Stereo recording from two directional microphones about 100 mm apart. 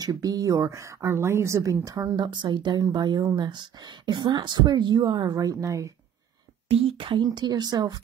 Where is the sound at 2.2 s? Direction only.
50° right (ahead or behind); by 5.9 s 35° right (ahead or behind).